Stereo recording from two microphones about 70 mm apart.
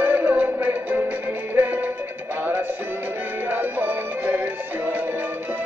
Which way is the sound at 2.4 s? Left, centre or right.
Right.